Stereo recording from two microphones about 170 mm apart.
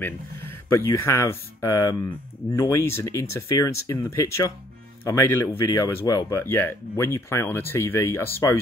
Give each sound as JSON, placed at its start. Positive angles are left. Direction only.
{"t": 0.0, "sound": "speech", "side_deg": 10}